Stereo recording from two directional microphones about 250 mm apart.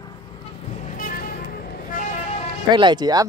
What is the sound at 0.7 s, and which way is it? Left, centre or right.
Vehicle, left.